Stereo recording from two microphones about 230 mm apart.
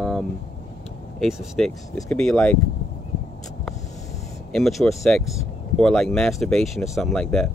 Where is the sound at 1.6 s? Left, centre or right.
Centre.